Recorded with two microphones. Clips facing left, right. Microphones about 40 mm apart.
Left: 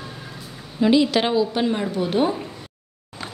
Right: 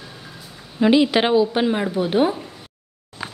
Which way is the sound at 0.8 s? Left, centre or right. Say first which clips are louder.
Right 2 dB; right.